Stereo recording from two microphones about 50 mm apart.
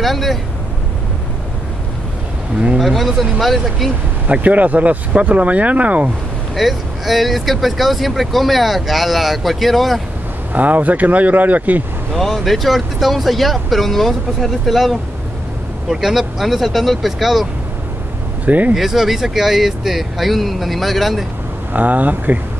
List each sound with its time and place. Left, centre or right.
0.0 s speech: centre
2.8 s speech: centre
4.3 s speech: right
6.5 s speech: centre
10.5 s speech: right
12.1 s speech: centre
18.4 s speech: right
18.8 s speech: centre
21.7 s speech: right